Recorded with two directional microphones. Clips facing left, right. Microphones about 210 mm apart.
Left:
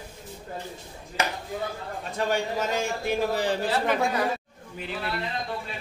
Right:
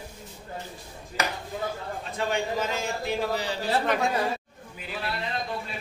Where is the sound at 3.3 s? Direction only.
50° left (ahead or behind).